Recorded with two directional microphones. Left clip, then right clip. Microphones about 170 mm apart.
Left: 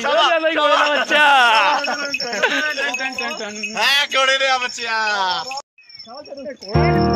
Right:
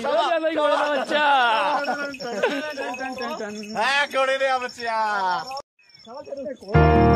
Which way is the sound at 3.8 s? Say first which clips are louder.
Left 5 dB; 80° right.